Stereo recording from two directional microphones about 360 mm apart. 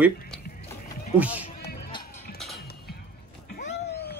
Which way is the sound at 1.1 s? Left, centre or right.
Centre.